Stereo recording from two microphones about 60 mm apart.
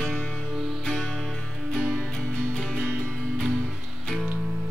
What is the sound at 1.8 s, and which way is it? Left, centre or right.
Music, centre.